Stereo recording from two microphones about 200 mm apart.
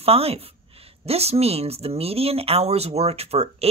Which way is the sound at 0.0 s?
30° right (ahead or behind).